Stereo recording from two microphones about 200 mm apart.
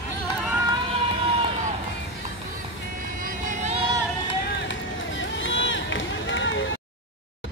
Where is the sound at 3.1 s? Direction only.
45° right (ahead or behind).